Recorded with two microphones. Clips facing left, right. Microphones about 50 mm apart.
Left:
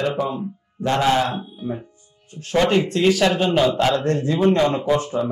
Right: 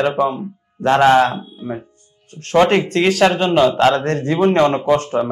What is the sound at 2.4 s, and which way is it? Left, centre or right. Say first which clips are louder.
A man's voice: right 4 dB; right.